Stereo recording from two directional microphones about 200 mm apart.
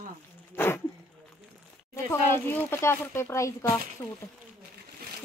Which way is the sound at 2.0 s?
10° left (ahead or behind).